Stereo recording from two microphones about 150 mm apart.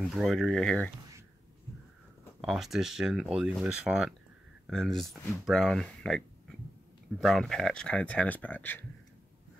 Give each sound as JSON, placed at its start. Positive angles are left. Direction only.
{"t": 0.0, "sound": "speech", "side_deg": 0}
{"t": 2.4, "sound": "speech", "side_deg": 0}